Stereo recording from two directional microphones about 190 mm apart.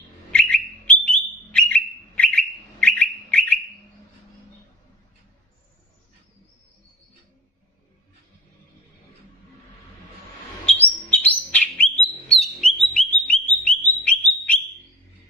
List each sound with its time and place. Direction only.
0.3 s bird: 5° left (ahead or behind)
10.6 s bird: 5° left (ahead or behind)
12.8 s music: 5° left (ahead or behind)
14.0 s bird: 5° left (ahead or behind)